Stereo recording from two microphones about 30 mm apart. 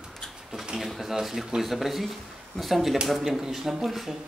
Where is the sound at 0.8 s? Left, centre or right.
Centre.